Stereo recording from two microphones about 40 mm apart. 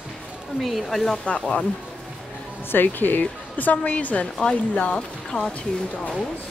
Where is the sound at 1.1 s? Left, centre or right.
Left.